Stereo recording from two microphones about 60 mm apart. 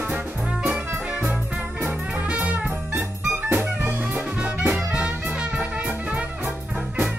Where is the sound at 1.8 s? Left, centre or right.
Right.